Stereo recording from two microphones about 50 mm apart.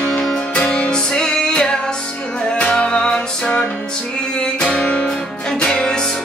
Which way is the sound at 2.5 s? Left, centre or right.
Left.